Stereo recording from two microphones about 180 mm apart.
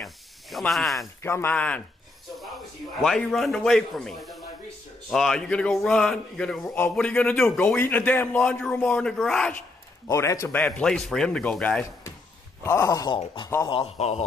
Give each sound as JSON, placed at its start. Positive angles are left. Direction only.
{"t": 0.0, "sound": "snake", "side_deg": 0}
{"t": 1.2, "sound": "a man's voice", "side_deg": 10}
{"t": 3.0, "sound": "a man's voice", "side_deg": 0}
{"t": 10.0, "sound": "a man's voice", "side_deg": 15}
{"t": 10.6, "sound": "a man's voice", "side_deg": 5}
{"t": 12.6, "sound": "speech", "side_deg": 15}